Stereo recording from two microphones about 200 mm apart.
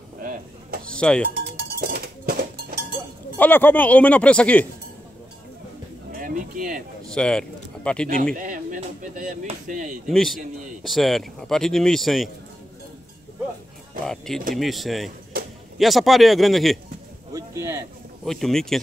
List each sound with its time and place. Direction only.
0.2 s a sound: 45° right (ahead or behind)
0.9 s speech: 5° left (ahead or behind)
1.4 s cowbell: 50° right (ahead or behind)
3.3 s speech: 10° left (ahead or behind)
6.1 s a sound: 45° right (ahead or behind)
7.1 s speech: 5° left (ahead or behind)
8.4 s speech: 40° right (ahead or behind)
10.0 s speech: centre (ahead or behind)
14.0 s speech: centre (ahead or behind)
17.3 s speech: 15° right (ahead or behind)
18.2 s speech: centre (ahead or behind)